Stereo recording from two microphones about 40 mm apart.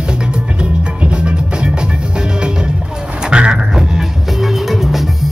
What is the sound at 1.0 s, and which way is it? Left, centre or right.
Music, right.